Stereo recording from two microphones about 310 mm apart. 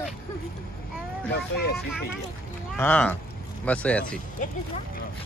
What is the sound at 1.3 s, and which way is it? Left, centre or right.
Speech, left.